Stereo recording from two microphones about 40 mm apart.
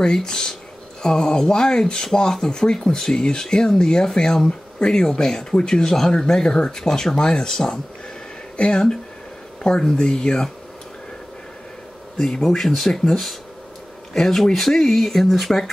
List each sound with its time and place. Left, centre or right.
0.0 s speech: centre
12.2 s speech: centre
12.4 s speech: centre
14.1 s speech: centre